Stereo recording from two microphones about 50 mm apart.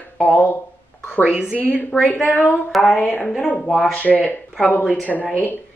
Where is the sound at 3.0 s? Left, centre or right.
Left.